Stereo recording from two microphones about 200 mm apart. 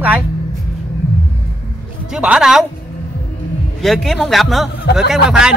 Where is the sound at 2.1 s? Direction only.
5° right (ahead or behind).